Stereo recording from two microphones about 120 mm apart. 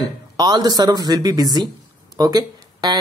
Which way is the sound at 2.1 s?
35° right (ahead or behind).